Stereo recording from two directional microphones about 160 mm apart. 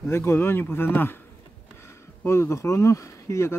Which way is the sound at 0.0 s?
15° left (ahead or behind).